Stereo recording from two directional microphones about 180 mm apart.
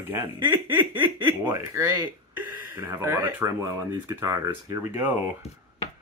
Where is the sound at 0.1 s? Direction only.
10° right (ahead or behind).